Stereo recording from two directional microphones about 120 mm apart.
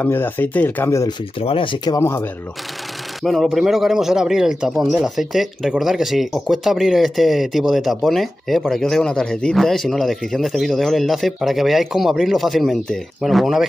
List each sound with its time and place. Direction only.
0.0 s speech: 15° left (ahead or behind)
1.4 s speech: 50° left (ahead or behind)
1.9 s speech: 25° left (ahead or behind)
3.3 s a man's voice: centre (ahead or behind)